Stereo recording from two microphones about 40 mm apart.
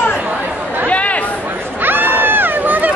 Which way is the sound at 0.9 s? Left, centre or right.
Left.